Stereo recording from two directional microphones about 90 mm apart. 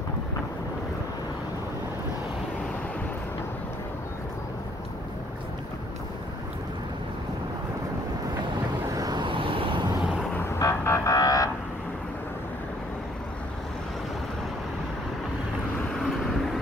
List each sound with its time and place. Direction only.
8.9 s vehicle: 45° right (ahead or behind)
9.2 s vehicle: 75° right (ahead or behind)
10.6 s vehicle: 35° left (ahead or behind)
16.0 s vehicle: 5° left (ahead or behind)